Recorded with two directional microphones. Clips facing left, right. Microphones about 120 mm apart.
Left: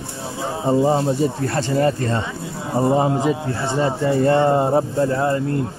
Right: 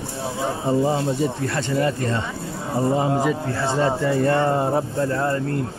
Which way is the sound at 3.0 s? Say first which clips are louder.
Left 2 dB; 20° left (ahead or behind).